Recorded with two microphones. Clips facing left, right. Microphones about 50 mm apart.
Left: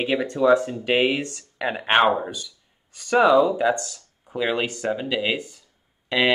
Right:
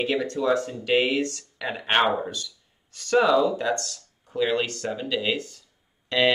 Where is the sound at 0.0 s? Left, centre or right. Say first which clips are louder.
Left 4 dB; centre.